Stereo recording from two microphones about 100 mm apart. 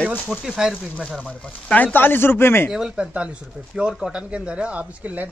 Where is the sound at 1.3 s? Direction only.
15° left (ahead or behind).